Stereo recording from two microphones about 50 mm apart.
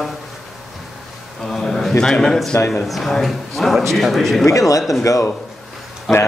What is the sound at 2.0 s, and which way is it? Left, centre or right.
A man's voice, centre.